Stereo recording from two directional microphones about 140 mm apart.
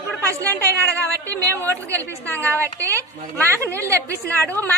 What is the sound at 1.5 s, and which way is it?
A woman's voice, 15° left (ahead or behind).